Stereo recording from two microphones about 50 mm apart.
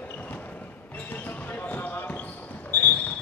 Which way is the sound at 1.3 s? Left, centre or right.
Left.